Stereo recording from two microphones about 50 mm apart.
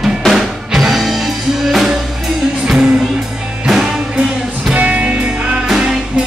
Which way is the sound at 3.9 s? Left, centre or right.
Right.